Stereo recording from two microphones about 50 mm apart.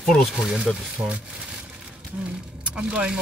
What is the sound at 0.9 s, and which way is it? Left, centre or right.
Speech, right.